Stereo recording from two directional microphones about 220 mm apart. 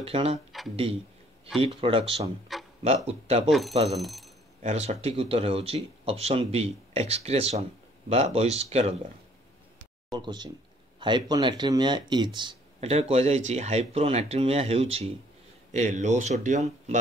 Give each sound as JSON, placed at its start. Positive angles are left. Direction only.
{"t": 0.0, "sound": "speech", "side_deg": -25}
{"t": 0.5, "sound": "a sound", "side_deg": 0}
{"t": 1.6, "sound": "speech", "side_deg": -25}
{"t": 3.4, "sound": "speech", "side_deg": 0}
{"t": 3.7, "sound": "speech", "side_deg": -25}
{"t": 4.0, "sound": "speech", "side_deg": 0}
{"t": 4.6, "sound": "speech", "side_deg": -30}
{"t": 10.1, "sound": "speech", "side_deg": -20}